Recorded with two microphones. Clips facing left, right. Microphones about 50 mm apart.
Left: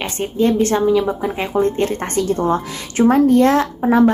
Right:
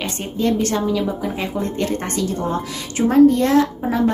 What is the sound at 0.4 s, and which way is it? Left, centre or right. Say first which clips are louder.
A woman's voice: left 4 dB; left.